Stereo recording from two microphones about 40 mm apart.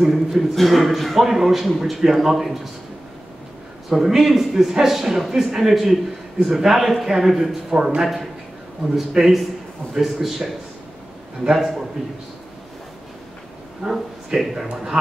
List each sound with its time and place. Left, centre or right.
0.0 s a man's voice: centre
3.9 s a man's voice: centre
7.7 s a man's voice: right
8.0 s a man's voice: centre
11.5 s a man's voice: centre
13.8 s a man's voice: centre
14.7 s a man's voice: right